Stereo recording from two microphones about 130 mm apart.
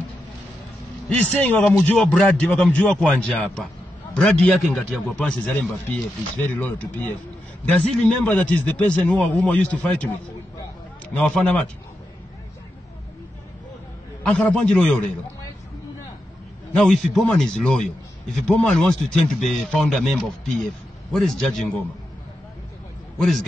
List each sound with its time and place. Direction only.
1.0 s a man's voice: 10° left (ahead or behind)
11.1 s a man's voice: 10° left (ahead or behind)
14.2 s a man's voice: 10° left (ahead or behind)
16.7 s a man's voice: 5° left (ahead or behind)
23.1 s a man's voice: centre (ahead or behind)